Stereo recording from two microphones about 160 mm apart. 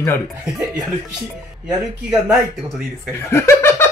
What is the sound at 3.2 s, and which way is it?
Speech, 15° left (ahead or behind).